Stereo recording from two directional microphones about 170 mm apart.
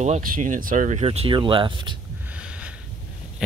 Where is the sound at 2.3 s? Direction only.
5° right (ahead or behind).